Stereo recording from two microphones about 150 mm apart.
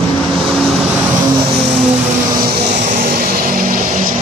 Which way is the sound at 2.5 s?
70° right (ahead or behind).